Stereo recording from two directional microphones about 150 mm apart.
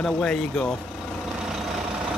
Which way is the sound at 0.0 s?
5° left (ahead or behind).